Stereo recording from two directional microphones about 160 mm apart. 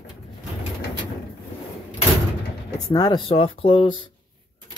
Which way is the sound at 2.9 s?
30° left (ahead or behind).